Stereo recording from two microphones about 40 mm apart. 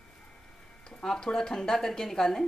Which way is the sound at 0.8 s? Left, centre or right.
Centre.